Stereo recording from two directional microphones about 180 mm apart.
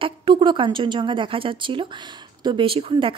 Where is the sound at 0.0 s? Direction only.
30° right (ahead or behind).